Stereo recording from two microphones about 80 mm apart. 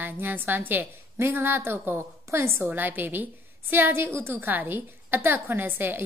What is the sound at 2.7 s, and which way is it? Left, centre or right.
A woman's voice, right.